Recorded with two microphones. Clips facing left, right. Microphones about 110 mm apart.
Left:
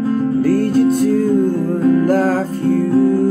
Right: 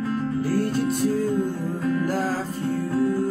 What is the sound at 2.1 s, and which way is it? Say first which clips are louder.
Music: left 10 dB; 75° left (ahead or behind).